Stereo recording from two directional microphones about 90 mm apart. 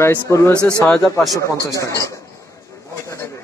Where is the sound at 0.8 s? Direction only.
15° left (ahead or behind).